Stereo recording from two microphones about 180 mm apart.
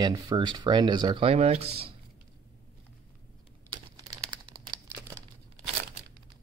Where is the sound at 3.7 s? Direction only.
25° right (ahead or behind).